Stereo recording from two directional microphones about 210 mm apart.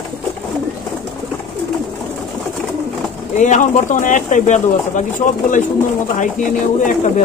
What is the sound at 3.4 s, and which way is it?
Speech, 35° left (ahead or behind).